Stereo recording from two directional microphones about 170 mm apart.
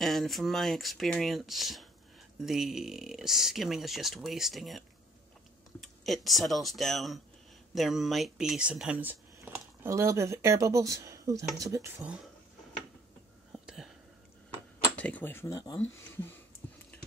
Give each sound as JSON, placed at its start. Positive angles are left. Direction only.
{"t": 0.0, "sound": "speech", "side_deg": 0}
{"t": 13.5, "sound": "a sound", "side_deg": -5}
{"t": 15.0, "sound": "speech", "side_deg": 10}